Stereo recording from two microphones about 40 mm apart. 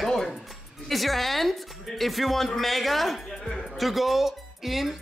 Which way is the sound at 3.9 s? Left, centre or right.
Centre.